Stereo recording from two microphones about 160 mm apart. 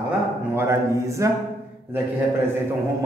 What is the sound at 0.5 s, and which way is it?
Speech, 15° right (ahead or behind).